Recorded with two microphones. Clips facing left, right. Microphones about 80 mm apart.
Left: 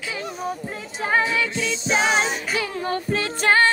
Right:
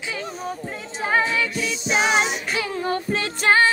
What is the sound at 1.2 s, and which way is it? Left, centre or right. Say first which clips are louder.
Music: even; left.